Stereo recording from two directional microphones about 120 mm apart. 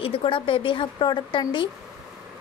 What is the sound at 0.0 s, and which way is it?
Speech, 50° left (ahead or behind).